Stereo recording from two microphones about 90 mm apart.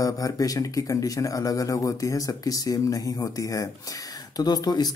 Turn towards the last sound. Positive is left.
turn(degrees=50)  # may be behind; listen again after turning